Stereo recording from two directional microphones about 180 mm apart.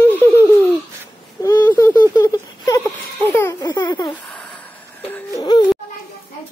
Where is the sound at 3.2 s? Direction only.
10° left (ahead or behind).